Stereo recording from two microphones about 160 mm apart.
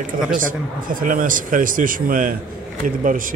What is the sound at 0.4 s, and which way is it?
Speech, 55° right (ahead or behind).